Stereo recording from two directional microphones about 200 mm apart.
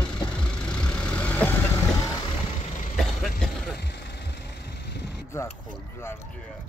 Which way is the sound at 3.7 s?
60° left (ahead or behind).